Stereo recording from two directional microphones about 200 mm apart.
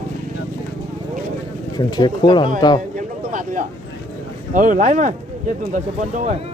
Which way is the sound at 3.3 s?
40° right (ahead or behind).